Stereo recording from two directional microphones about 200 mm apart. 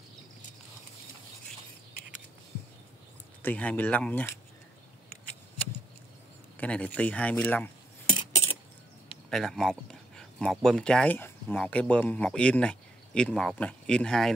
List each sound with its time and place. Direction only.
3.4 s speech: 5° left (ahead or behind)
6.5 s speech: 5° left (ahead or behind)
8.1 s cutlery: 30° left (ahead or behind)
9.3 s speech: centre (ahead or behind)